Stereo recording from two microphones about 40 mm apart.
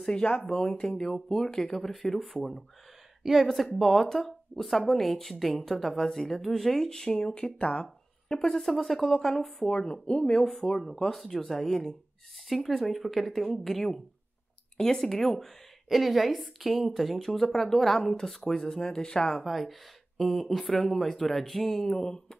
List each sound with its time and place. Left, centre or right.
0.1 s speech: left
0.5 s a woman's voice: centre
3.7 s a woman's voice: centre
7.1 s speech: left
8.5 s a woman's voice: centre
9.7 s speech: left
10.4 s a woman's voice: centre
19.4 s a woman's voice: centre
22.0 s speech: left